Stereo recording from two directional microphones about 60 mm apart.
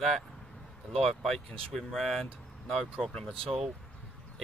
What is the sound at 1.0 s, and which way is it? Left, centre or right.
Speech, centre.